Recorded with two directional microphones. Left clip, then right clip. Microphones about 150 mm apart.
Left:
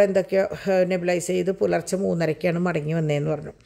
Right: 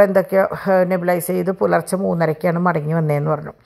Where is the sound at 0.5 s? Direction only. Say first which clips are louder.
Right 5 dB; centre (ahead or behind).